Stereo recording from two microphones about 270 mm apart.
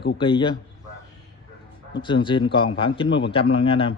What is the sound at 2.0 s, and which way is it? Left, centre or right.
Speech, centre.